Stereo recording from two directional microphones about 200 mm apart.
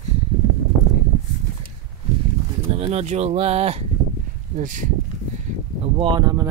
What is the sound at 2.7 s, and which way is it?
Speech, 30° right (ahead or behind).